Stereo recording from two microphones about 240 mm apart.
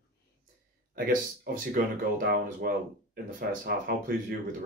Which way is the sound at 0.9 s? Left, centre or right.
Right.